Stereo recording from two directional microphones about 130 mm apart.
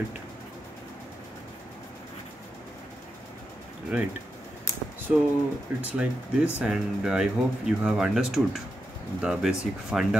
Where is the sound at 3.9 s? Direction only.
10° right (ahead or behind).